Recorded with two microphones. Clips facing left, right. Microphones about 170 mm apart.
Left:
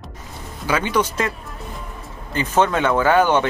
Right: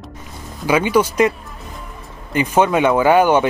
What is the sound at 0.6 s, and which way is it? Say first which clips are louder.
Speech: right 5 dB; 10° right (ahead or behind).